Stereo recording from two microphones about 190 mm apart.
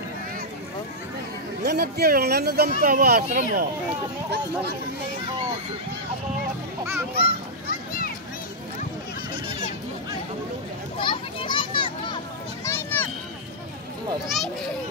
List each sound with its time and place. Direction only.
1.6 s speech: 60° right (ahead or behind)
3.3 s speech: 40° right (ahead or behind)
7.2 s a sound: 50° left (ahead or behind)
11.0 s children playing: 25° left (ahead or behind)
12.6 s a sound: 10° left (ahead or behind)
14.2 s a child's voice: centre (ahead or behind)